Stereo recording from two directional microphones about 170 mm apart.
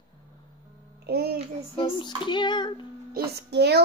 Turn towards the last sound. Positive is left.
turn(degrees=-75)  # may be behind; listen again after turning